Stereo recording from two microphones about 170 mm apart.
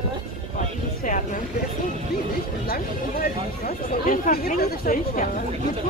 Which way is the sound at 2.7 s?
65° left (ahead or behind).